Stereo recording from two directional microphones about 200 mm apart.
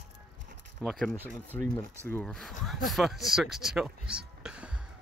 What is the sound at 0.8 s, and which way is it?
Speech, centre (ahead or behind).